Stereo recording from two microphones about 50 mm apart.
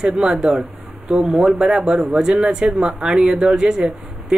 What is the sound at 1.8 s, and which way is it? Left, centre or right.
Speech, centre.